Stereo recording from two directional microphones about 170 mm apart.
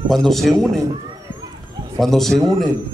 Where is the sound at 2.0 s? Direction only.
Centre (ahead or behind).